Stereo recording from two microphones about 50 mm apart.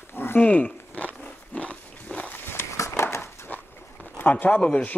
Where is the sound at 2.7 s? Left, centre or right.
Left.